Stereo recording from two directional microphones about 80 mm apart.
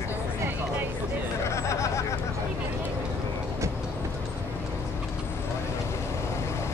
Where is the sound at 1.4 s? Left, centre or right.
Left.